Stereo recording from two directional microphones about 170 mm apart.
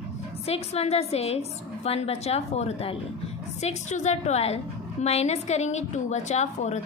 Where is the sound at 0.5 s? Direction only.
35° left (ahead or behind).